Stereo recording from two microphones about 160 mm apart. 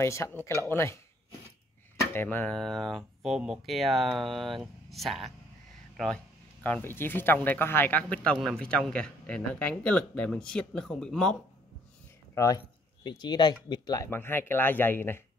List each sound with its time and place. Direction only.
0.0 s speech: 15° left (ahead or behind)
2.1 s speech: 10° left (ahead or behind)
12.4 s speech: 25° left (ahead or behind)